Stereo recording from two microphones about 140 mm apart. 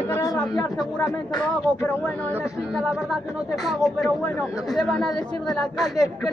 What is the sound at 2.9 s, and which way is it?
Speech, centre (ahead or behind).